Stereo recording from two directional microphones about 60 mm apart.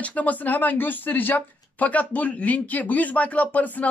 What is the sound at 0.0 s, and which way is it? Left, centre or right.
Speech, left.